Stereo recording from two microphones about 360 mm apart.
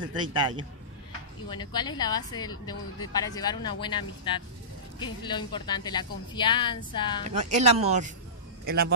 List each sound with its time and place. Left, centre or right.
0.1 s a man's voice: centre
1.5 s a woman's voice: centre
7.5 s a man's voice: centre